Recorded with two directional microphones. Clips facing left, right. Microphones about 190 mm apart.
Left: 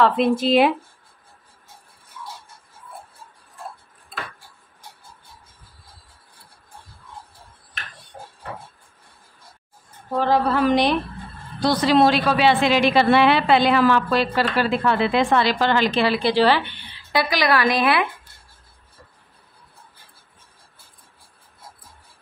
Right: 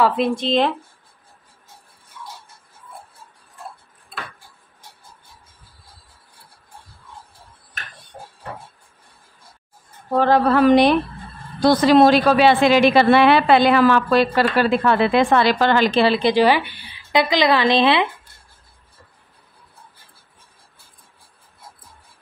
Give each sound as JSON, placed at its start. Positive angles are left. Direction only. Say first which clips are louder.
{"t": 0.0, "sound": "speech", "louder": "left 1 dB", "side_deg": 0}
{"t": 10.1, "sound": "a woman's voice", "louder": "right 4 dB", "side_deg": -60}
{"t": 16.0, "sound": "a woman's voice", "louder": "right 3 dB", "side_deg": -25}